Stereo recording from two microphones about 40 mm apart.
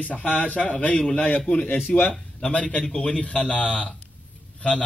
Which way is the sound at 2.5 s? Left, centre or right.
Left.